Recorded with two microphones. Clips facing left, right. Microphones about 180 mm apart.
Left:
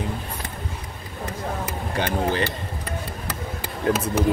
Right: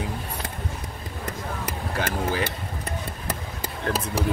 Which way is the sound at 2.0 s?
5° right (ahead or behind).